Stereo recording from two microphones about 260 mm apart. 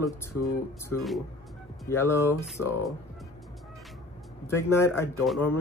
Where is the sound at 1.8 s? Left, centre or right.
Centre.